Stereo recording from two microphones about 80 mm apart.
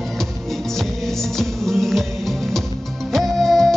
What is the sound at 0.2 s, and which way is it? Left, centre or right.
Music, centre.